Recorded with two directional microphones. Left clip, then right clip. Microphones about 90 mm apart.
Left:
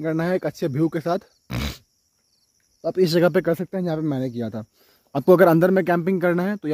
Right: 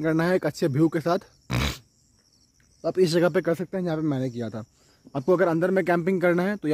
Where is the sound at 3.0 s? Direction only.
75° left (ahead or behind).